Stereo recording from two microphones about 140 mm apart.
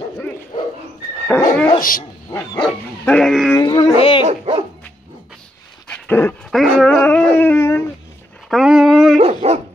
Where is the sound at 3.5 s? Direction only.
30° left (ahead or behind).